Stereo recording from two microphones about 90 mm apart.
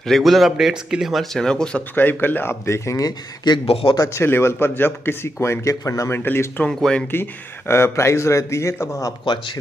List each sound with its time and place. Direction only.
0.0 s speech: centre (ahead or behind)
2.0 s a man's voice: 20° left (ahead or behind); by 3.6 s 50° left (ahead or behind)
4.1 s speech: 30° left (ahead or behind)
6.6 s speech: 10° left (ahead or behind)
7.1 s a man's voice: 25° left (ahead or behind)
9.2 s speech: 60° left (ahead or behind)